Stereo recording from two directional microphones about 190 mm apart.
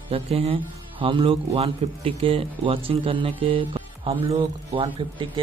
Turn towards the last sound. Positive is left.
turn(degrees=-25)  # may be behind; listen again after turning